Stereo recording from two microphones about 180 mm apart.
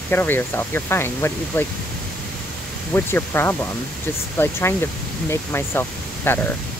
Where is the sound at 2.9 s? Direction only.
15° left (ahead or behind).